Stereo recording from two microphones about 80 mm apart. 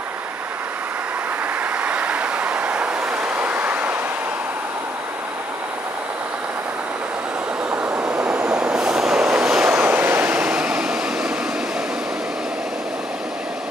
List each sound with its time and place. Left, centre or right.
1.6 s vehicle: centre
7.7 s train: right
9.7 s vehicle: right
10.3 s vehicle: centre